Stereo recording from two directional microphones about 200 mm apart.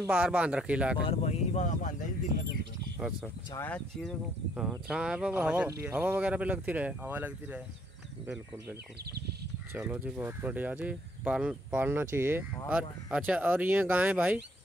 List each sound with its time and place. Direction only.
0.0 s speech: 10° right (ahead or behind)
1.0 s speech: 30° left (ahead or behind)
3.0 s speech: 5° right (ahead or behind)
3.5 s speech: 10° left (ahead or behind)
4.6 s speech: 5° right (ahead or behind)
9.8 s speech: 10° right (ahead or behind)